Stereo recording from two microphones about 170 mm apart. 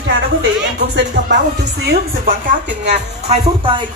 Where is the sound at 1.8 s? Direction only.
70° right (ahead or behind).